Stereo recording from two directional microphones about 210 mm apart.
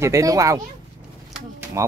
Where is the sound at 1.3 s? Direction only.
10° right (ahead or behind).